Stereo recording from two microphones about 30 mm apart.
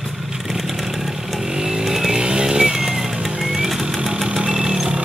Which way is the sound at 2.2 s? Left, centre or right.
Right.